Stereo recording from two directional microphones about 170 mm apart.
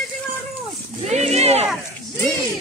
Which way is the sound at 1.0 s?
40° right (ahead or behind).